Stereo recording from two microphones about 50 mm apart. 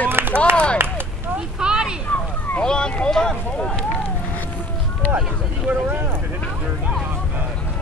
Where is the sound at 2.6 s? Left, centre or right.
Centre.